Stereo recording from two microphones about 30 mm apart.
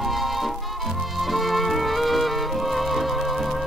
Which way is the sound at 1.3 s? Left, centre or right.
Centre.